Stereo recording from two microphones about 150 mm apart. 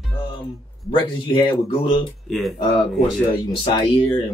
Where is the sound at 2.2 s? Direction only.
Centre (ahead or behind).